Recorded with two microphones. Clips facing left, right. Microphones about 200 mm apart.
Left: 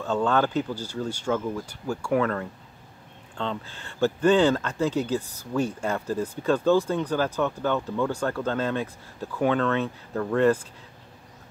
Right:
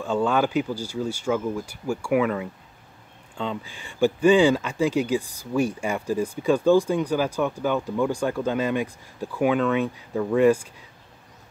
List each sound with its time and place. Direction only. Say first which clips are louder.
0.0 s speech: right 1 dB; 10° right (ahead or behind)